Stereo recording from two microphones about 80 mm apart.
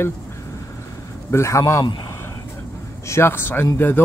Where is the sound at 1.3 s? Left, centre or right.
Left.